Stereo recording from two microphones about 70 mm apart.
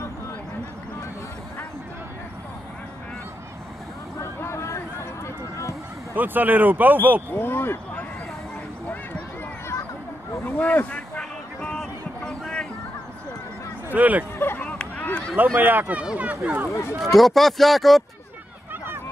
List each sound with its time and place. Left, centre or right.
4.2 s vehicle: left
6.1 s speech: right
7.3 s speech: left
10.6 s a sound: left
13.8 s speech: right
14.4 s a sound: left
14.7 s a sound: left
15.3 s speech: right
17.0 s speech: centre